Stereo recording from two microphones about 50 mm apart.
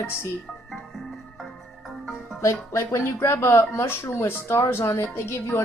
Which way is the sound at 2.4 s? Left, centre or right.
Left.